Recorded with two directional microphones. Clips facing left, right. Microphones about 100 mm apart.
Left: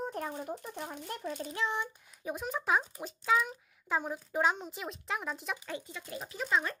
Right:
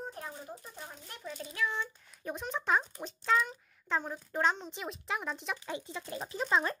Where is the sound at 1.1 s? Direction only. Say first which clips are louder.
Left 4 dB; 50° left (ahead or behind).